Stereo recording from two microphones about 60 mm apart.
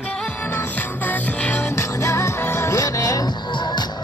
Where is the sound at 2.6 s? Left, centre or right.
Left.